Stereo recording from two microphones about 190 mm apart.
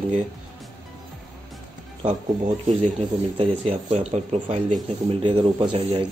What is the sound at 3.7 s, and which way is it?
Speech, 35° right (ahead or behind).